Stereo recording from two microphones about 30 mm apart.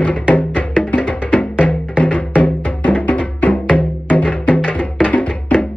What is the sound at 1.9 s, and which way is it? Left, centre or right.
Music, left.